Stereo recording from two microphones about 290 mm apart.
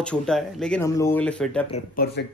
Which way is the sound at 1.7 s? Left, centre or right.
Left.